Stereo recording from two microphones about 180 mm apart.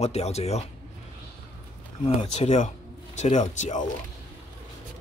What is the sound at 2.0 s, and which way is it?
Speech, 35° left (ahead or behind).